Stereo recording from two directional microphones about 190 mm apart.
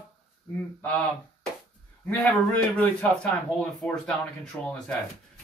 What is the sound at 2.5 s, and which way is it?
Speech, 5° left (ahead or behind).